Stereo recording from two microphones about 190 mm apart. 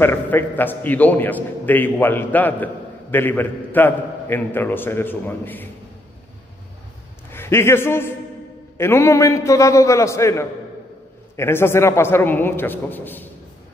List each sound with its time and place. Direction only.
0.0 s a man's voice: 10° left (ahead or behind)
7.2 s a man's voice: 15° left (ahead or behind)